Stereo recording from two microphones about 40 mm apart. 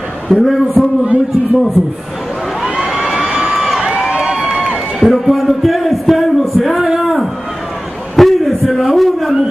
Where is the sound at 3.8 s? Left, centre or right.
Right.